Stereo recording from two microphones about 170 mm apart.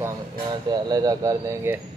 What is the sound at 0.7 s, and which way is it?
Speech, 25° right (ahead or behind).